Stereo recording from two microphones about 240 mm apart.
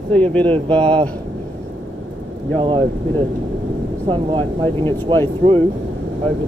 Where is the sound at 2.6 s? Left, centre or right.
Right.